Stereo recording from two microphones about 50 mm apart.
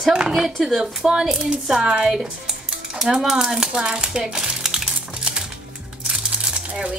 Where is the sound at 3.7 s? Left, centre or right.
Centre.